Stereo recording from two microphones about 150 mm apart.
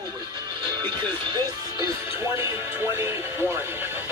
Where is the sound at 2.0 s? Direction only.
20° right (ahead or behind).